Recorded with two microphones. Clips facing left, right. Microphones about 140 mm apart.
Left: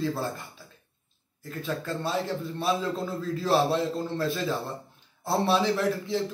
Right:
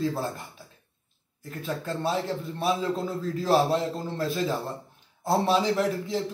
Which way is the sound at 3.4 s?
15° right (ahead or behind).